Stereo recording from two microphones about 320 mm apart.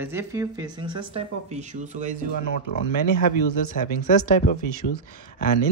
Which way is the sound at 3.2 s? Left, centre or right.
Left.